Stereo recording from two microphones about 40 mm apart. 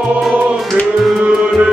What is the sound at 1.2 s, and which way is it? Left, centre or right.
Music, right.